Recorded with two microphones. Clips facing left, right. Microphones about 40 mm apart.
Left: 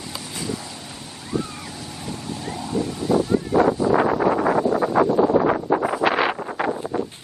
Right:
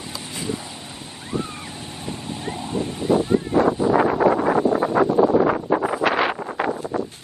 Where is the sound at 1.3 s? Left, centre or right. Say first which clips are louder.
Left 1 dB; right.